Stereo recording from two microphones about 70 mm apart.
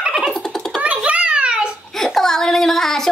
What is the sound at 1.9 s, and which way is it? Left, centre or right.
Child singing, centre.